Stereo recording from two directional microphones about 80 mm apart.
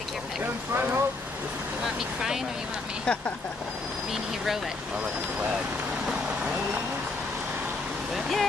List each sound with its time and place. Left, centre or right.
0.4 s speech: right
3.1 s speech: centre
8.1 s speech: centre